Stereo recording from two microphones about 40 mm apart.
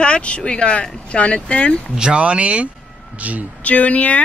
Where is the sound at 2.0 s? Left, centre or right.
Right.